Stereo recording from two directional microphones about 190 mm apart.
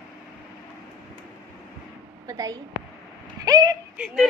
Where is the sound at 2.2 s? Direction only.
20° right (ahead or behind).